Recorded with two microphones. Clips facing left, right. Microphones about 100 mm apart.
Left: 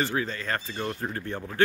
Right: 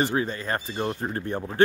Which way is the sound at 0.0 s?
25° right (ahead or behind).